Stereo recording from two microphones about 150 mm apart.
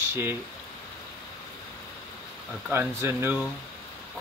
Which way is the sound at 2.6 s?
15° right (ahead or behind).